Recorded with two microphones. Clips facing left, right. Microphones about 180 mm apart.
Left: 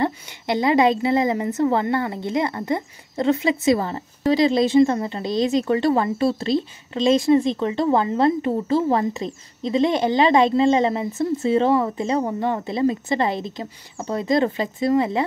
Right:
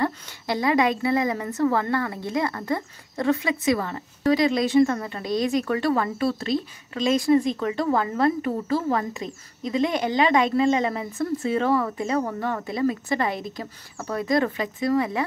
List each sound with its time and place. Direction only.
0.0 s a woman's voice: 25° left (ahead or behind)